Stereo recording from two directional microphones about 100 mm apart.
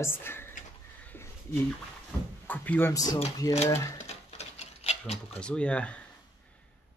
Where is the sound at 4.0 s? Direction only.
90° left.